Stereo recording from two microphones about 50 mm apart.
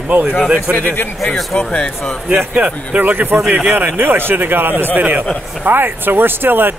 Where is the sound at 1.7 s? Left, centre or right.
Left.